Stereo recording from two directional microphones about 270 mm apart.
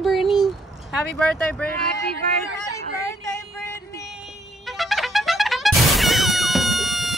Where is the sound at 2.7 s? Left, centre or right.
Centre.